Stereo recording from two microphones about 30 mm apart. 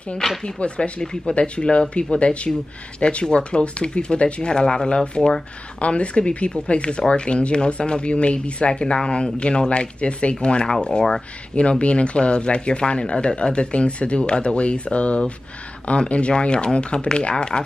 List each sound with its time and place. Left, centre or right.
0.2 s speech: centre
0.6 s speech: left
5.8 s speech: left
11.8 s speech: left